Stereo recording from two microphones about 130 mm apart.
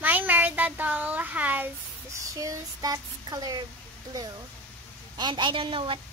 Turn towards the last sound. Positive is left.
turn(degrees=-40)  # may be behind; listen again after turning